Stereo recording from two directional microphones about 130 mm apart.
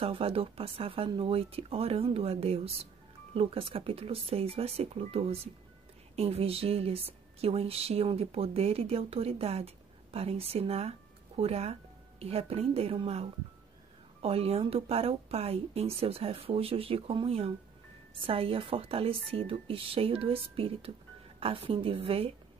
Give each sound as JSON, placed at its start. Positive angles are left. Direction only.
{"t": 0.0, "sound": "speech", "side_deg": -50}